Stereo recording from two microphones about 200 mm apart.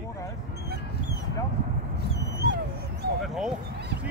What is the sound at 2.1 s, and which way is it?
Dog, 55° right (ahead or behind).